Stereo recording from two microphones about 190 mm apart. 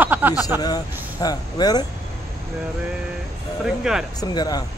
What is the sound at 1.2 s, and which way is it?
Speech, 20° left (ahead or behind).